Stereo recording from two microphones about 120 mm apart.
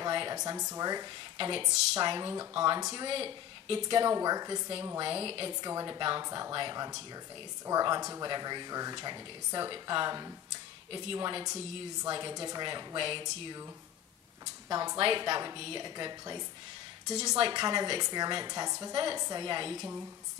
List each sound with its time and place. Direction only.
0.0 s a woman's voice: 35° right (ahead or behind)
5.1 s a woman's voice: 45° right (ahead or behind)
13.2 s a woman's voice: 30° right (ahead or behind)